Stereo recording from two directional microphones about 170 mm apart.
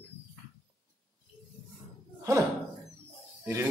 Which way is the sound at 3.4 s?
10° right (ahead or behind).